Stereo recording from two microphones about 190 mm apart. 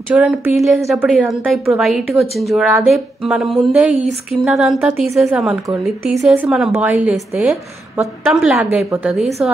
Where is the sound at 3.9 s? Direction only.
40° right (ahead or behind).